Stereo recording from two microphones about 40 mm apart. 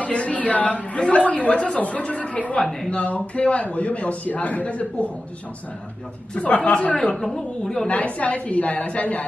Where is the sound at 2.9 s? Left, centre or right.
Left.